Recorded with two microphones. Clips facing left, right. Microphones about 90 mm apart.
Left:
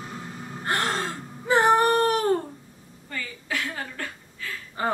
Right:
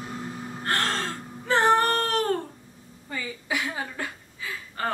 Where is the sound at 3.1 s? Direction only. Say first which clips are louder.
Right 1 dB; 15° right (ahead or behind).